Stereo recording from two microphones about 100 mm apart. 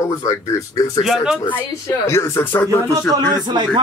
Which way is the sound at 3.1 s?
40° right (ahead or behind).